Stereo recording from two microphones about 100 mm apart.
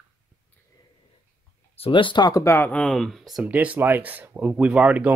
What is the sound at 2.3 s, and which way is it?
Speech, 30° left (ahead or behind).